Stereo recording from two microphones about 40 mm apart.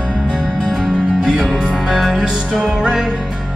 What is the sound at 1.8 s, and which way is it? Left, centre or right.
Music, centre.